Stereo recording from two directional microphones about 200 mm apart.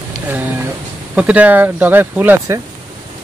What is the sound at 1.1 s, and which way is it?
Speech, 5° right (ahead or behind).